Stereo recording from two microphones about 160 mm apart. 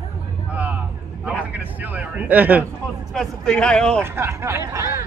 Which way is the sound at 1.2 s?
10° right (ahead or behind).